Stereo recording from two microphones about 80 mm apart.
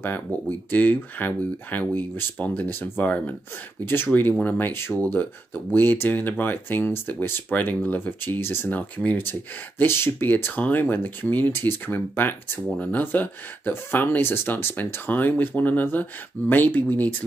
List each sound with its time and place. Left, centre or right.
0.0 s speech: left